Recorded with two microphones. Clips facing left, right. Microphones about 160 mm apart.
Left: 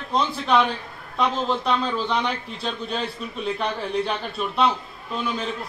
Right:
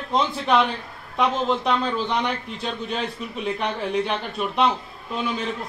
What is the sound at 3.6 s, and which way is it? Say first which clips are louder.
Speech: right 1 dB; 10° right (ahead or behind).